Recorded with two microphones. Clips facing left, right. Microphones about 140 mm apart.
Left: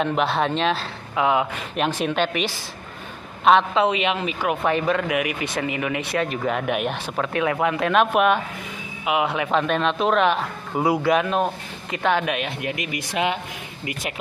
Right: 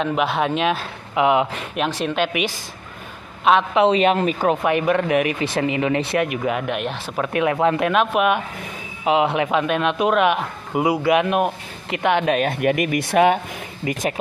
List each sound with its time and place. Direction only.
0.0 s a man's voice: centre (ahead or behind); by 1.5 s 20° right (ahead or behind)
1.8 s speech: centre (ahead or behind)
3.9 s speech: 40° right (ahead or behind)
4.6 s a man's voice: 15° right (ahead or behind)
5.0 s speech: 30° right (ahead or behind)
6.1 s a man's voice: 10° right (ahead or behind)
6.6 s speech: 5° left (ahead or behind)
7.2 s speech: 20° right (ahead or behind)
7.9 s speech: centre (ahead or behind)
9.0 s speech: 25° right (ahead or behind)
9.5 s a man's voice: 10° right (ahead or behind)
12.3 s speech: 40° right (ahead or behind)
12.6 s speech: 55° right (ahead or behind)